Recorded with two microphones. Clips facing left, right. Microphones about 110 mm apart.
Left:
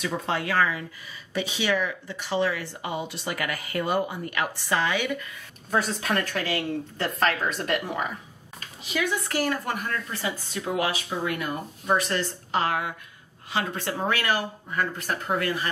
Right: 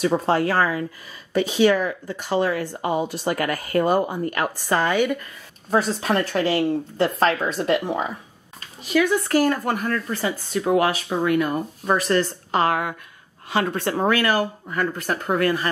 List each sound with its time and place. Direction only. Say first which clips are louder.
0.0 s speech: right 8 dB; 40° right (ahead or behind)
5.7 s speech: right 5 dB; 35° right (ahead or behind)
8.5 s speech: right 9 dB; 45° right (ahead or behind)
11.8 s speech: right 4 dB; 80° right
12.2 s speech: right 6 dB; 55° right (ahead or behind)